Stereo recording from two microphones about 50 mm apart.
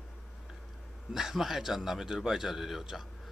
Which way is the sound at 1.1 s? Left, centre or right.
Centre.